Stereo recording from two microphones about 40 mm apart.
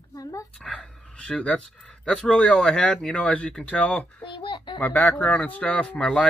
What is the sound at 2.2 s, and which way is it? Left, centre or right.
Speech, centre.